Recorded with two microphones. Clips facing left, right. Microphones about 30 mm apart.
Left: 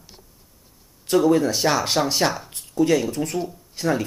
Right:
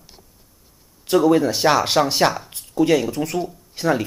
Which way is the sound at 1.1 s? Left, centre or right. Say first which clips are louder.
Right 2 dB; centre.